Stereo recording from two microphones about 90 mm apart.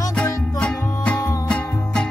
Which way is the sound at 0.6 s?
15° left (ahead or behind).